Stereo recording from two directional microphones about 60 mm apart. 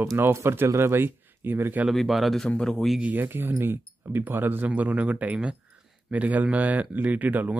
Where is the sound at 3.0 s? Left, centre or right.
Right.